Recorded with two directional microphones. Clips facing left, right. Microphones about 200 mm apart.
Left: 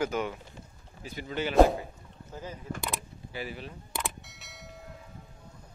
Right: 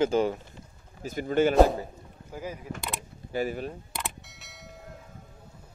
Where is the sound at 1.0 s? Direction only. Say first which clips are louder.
Right 9 dB; 50° right (ahead or behind).